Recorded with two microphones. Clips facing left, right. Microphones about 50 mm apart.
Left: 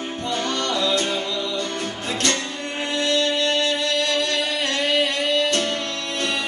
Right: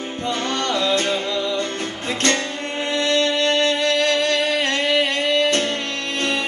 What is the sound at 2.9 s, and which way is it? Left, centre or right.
Music, right.